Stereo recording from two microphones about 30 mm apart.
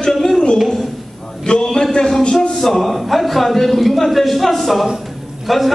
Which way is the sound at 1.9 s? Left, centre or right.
Left.